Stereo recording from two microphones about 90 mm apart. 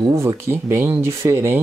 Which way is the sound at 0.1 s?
35° right (ahead or behind).